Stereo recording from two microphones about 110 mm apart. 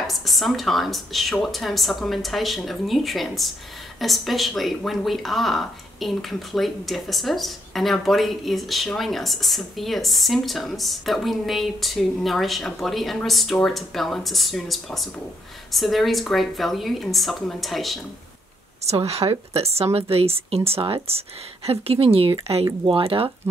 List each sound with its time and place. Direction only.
0.0 s speech: centre (ahead or behind)
18.9 s a woman's voice: 75° right (ahead or behind)